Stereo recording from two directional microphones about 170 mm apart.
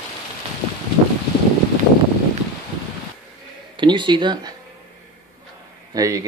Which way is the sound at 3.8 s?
25° right (ahead or behind).